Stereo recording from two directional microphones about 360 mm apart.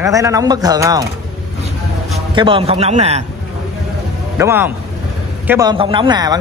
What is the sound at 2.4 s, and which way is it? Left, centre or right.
Speech, centre.